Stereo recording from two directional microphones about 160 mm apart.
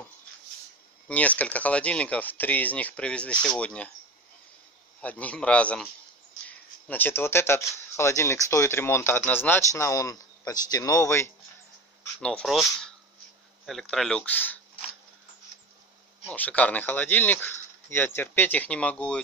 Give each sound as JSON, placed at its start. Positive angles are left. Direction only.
{"t": 1.0, "sound": "speech", "side_deg": 10}
{"t": 5.0, "sound": "speech", "side_deg": 10}
{"t": 12.2, "sound": "speech", "side_deg": 5}
{"t": 16.3, "sound": "speech", "side_deg": 10}